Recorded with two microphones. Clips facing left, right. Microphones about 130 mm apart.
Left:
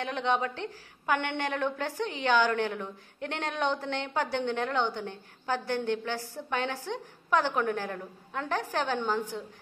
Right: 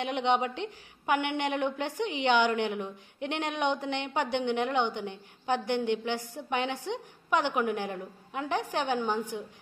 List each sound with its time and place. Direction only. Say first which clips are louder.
0.0 s a woman's voice: right 2 dB; 20° right (ahead or behind)